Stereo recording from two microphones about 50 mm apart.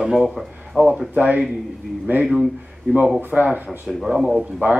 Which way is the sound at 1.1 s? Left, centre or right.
Right.